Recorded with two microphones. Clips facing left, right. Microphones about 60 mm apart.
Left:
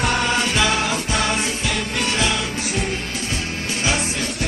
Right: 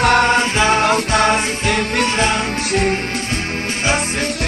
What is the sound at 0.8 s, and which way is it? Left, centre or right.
Music, right.